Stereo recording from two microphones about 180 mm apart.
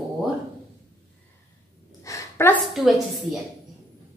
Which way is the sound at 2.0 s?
15° left (ahead or behind).